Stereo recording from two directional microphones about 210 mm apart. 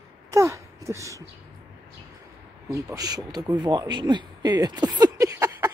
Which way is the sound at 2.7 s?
15° right (ahead or behind).